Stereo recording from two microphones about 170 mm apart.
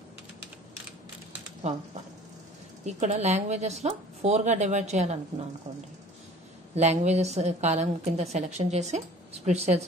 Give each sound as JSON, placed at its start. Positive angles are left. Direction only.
{"t": 2.8, "sound": "a woman's voice", "side_deg": -40}
{"t": 6.7, "sound": "a woman's voice", "side_deg": -40}